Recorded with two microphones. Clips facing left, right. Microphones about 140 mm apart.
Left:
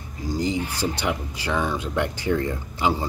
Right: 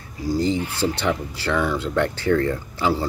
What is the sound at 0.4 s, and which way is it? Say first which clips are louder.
Speech: right 2 dB; 15° left (ahead or behind).